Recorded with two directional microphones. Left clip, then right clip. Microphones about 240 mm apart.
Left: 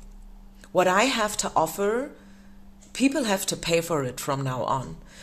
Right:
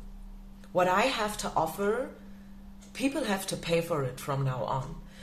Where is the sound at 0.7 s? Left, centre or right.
Left.